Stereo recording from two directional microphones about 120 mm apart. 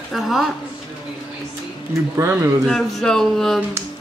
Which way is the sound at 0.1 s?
Centre (ahead or behind).